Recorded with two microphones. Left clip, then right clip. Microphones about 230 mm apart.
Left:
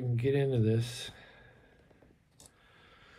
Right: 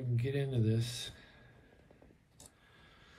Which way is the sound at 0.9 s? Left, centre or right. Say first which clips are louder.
Left 1 dB; centre.